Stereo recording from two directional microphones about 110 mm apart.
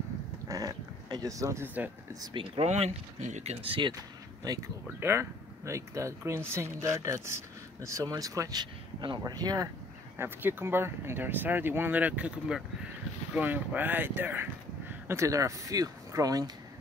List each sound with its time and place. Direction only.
0.5 s a sound: 35° right (ahead or behind)
2.1 s speech: 45° right (ahead or behind)
2.6 s speech: 80° right
3.6 s speech: 50° right (ahead or behind)
4.5 s speech: 35° right (ahead or behind)
4.8 s speech: 20° right (ahead or behind)
10.1 s speech: 20° right (ahead or behind)